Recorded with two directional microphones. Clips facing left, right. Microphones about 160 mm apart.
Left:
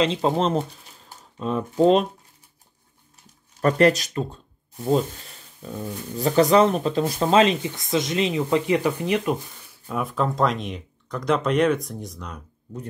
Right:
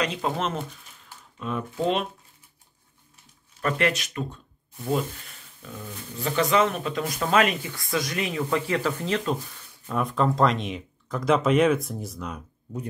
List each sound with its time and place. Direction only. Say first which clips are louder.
0.0 s speech: left 6 dB; 30° left (ahead or behind)
3.6 s speech: left 7 dB; 40° left (ahead or behind); by 9.4 s 15° left (ahead or behind)
9.8 s speech: right 1 dB; 5° left (ahead or behind)